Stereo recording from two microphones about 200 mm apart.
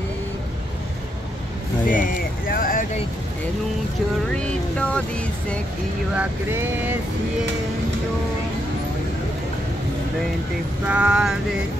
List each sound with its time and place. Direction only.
1.9 s vehicle: 45° left (ahead or behind)
4.4 s speech: 5° left (ahead or behind)
6.1 s vehicle: 10° right (ahead or behind)
10.9 s speech: 5° right (ahead or behind)